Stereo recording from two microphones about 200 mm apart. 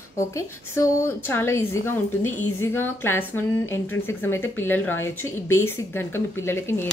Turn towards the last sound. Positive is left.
turn(degrees=10)  # may be behind; listen again after turning